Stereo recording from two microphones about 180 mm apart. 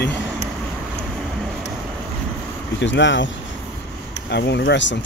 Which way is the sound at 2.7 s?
90° left.